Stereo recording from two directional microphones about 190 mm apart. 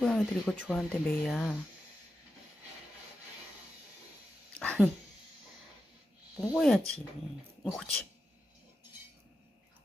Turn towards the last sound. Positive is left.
turn(degrees=5)  # may be behind; listen again after turning